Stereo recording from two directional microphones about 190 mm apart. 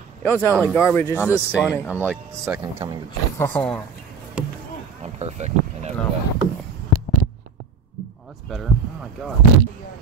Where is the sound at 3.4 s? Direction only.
10° left (ahead or behind).